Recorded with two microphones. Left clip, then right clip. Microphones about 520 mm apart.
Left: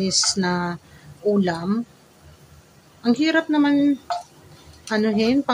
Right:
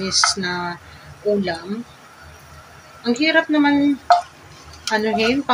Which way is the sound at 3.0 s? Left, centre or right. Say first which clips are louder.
Right 3 dB; left.